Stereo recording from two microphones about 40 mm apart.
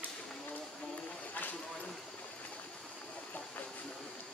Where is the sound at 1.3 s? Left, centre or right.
Left.